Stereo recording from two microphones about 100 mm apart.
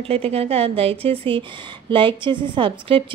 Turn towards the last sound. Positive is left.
turn(degrees=-60)  # may be behind; listen again after turning